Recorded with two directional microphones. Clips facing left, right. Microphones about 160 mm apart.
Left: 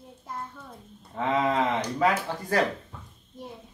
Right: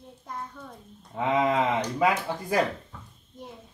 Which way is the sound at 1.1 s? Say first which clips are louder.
Right 1 dB; 10° right (ahead or behind).